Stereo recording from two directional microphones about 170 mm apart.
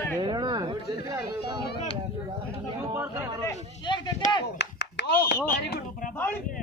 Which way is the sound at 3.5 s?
25° left (ahead or behind).